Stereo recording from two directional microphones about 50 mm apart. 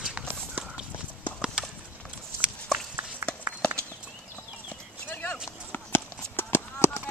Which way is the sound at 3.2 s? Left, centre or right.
Right.